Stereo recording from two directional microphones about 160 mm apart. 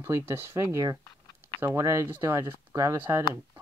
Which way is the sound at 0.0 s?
15° right (ahead or behind).